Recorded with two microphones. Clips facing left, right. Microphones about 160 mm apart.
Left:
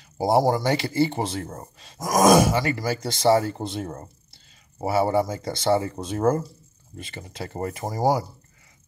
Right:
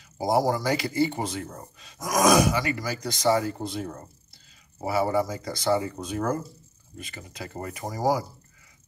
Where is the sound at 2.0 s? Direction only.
45° left (ahead or behind).